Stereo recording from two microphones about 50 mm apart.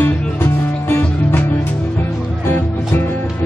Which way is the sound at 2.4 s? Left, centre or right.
Left.